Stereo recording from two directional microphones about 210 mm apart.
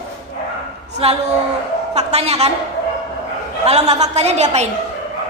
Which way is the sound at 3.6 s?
30° right (ahead or behind).